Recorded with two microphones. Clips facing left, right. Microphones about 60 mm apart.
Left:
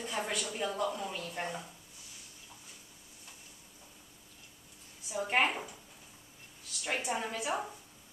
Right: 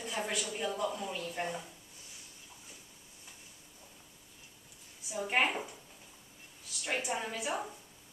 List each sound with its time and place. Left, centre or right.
0.0 s speech: centre
5.1 s speech: centre